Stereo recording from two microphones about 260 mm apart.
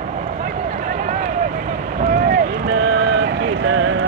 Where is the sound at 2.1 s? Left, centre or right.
Right.